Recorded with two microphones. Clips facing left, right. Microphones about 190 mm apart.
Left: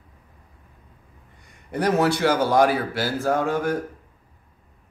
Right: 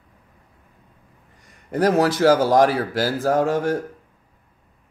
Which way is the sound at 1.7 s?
40° right (ahead or behind).